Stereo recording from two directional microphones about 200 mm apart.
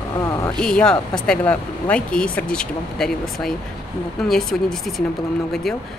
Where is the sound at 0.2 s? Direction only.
15° left (ahead or behind).